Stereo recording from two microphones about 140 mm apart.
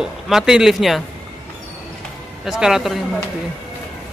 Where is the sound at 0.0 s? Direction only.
5° right (ahead or behind).